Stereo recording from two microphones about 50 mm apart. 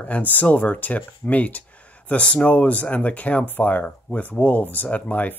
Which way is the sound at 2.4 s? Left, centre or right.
Left.